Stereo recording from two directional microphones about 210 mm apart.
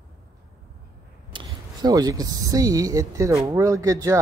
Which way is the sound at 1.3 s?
20° right (ahead or behind).